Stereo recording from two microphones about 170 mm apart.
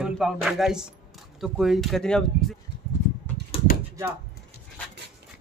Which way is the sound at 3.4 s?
80° right.